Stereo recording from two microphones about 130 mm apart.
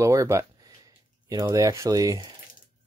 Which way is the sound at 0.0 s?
25° right (ahead or behind).